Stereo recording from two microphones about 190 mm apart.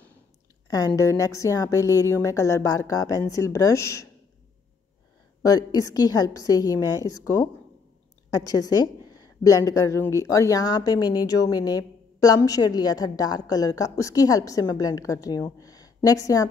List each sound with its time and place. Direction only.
0.7 s a woman's voice: 20° left (ahead or behind)
5.4 s a woman's voice: 20° left (ahead or behind)